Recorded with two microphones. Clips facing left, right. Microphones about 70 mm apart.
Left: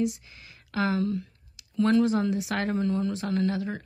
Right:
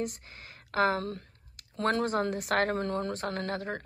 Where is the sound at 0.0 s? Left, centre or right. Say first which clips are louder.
Left 7 dB; right.